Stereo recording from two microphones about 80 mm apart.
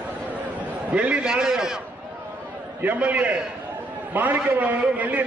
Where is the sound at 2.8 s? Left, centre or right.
Centre.